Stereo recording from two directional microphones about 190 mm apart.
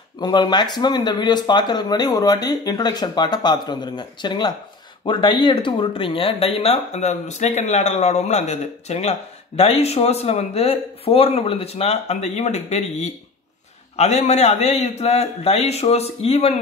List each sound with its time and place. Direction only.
0.2 s speech: 20° left (ahead or behind)